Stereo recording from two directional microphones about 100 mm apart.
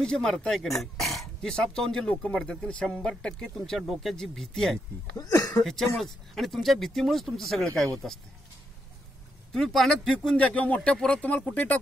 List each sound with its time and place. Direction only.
0.0 s speech: 5° left (ahead or behind)
5.1 s speech: 35° left (ahead or behind)
5.6 s speech: 5° left (ahead or behind)
9.5 s speech: 5° left (ahead or behind)